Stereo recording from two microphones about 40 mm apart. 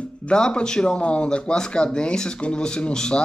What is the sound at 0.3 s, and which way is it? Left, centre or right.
Speech, left.